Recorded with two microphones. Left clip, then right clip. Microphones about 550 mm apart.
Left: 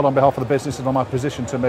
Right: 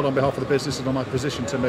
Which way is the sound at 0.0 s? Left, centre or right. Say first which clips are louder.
Left 6 dB; left.